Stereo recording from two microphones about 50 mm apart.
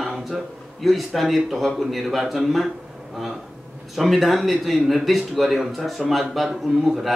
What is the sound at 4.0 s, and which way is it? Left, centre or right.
Speech, centre.